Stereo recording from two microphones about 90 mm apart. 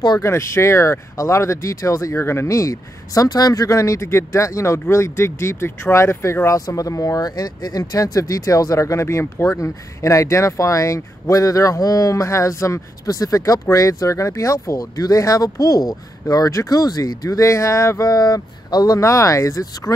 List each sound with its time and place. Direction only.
0.2 s speech: 30° left (ahead or behind)